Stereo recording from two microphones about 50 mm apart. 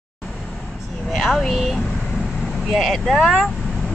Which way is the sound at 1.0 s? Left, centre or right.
Centre.